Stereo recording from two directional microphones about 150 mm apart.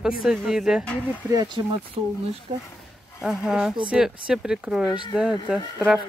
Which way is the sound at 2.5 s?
40° right (ahead or behind).